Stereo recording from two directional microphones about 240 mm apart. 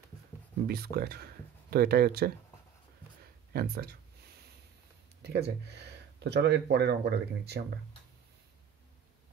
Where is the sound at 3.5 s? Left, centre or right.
Right.